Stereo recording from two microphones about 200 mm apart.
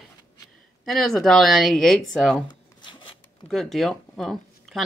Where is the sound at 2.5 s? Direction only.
20° left (ahead or behind).